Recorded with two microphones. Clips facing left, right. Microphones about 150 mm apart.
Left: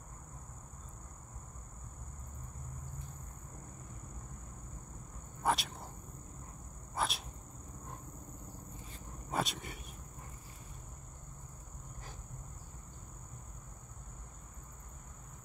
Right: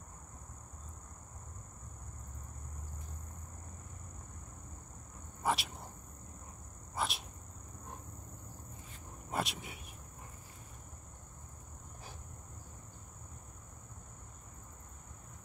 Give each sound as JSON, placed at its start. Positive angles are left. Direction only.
{"t": 5.4, "sound": "cricket", "side_deg": 0}
{"t": 7.0, "sound": "dog", "side_deg": 0}
{"t": 9.3, "sound": "cricket", "side_deg": 0}